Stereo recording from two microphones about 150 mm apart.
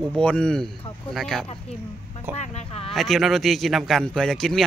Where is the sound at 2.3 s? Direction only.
45° left (ahead or behind).